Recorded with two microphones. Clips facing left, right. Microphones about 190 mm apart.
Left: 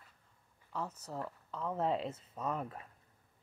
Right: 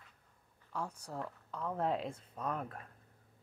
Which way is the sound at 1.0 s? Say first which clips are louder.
Left 1 dB; 5° left (ahead or behind).